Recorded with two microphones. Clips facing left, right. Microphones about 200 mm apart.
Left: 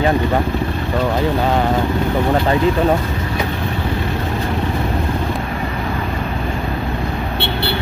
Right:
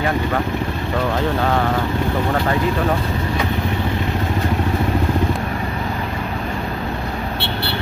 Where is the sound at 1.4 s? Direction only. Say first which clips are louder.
Left 2 dB; 20° left (ahead or behind).